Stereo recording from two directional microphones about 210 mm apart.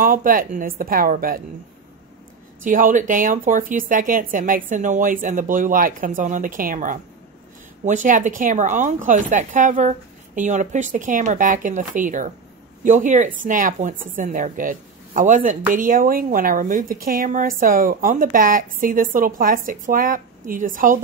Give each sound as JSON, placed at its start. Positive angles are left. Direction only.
{"t": 0.0, "sound": "a woman's voice", "side_deg": -40}
{"t": 2.6, "sound": "a woman's voice", "side_deg": -40}